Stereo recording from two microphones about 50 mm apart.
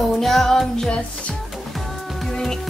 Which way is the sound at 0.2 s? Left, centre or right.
Centre.